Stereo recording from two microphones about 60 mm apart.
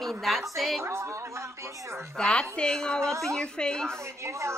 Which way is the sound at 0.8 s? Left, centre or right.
Right.